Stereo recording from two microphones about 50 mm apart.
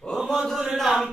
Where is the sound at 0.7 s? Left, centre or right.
Centre.